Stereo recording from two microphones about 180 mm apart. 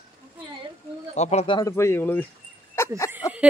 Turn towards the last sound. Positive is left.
turn(degrees=15)  # may be behind; listen again after turning